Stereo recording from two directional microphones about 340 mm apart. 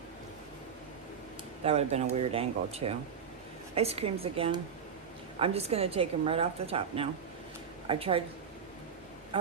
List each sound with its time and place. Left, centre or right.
1.6 s a woman's voice: centre